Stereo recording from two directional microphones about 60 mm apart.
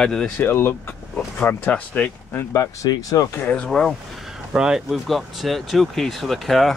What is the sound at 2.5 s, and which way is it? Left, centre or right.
Speech, left.